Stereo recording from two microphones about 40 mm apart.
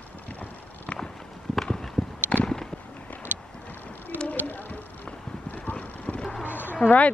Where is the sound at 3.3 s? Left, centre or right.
Right.